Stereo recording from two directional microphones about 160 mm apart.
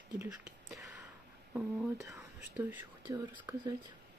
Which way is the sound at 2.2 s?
10° right (ahead or behind).